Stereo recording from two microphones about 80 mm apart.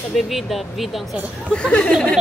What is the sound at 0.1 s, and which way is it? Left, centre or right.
Speech, centre.